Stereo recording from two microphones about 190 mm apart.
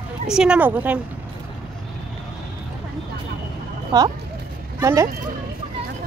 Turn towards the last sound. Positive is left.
turn(degrees=-15)  # may be behind; listen again after turning